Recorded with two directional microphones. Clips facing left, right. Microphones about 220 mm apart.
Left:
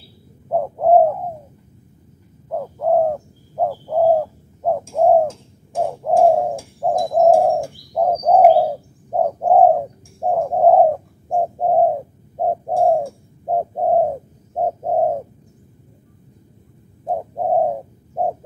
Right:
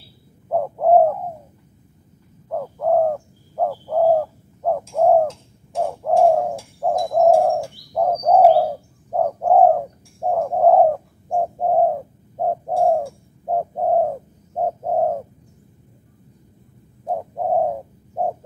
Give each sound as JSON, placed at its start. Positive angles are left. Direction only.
{"t": 0.5, "sound": "bird", "side_deg": 10}
{"t": 2.5, "sound": "bird", "side_deg": 10}
{"t": 17.0, "sound": "bird", "side_deg": 20}